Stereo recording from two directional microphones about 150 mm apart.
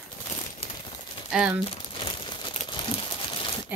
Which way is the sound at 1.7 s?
35° left (ahead or behind).